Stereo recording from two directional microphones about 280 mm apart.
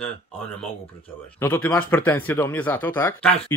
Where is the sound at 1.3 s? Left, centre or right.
Centre.